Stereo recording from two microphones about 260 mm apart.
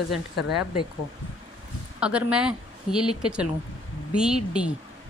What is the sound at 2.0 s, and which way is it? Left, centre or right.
A woman's voice, centre.